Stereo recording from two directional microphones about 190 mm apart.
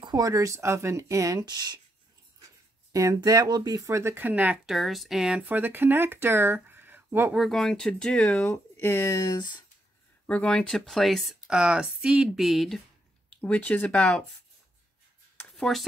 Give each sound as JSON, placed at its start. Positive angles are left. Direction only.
{"t": 0.0, "sound": "speech", "side_deg": -20}
{"t": 2.9, "sound": "speech", "side_deg": -20}
{"t": 10.2, "sound": "speech", "side_deg": 5}
{"t": 15.5, "sound": "a sound", "side_deg": 0}